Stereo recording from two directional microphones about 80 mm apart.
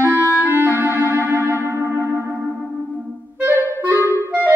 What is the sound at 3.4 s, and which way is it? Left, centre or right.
Clarinet, right.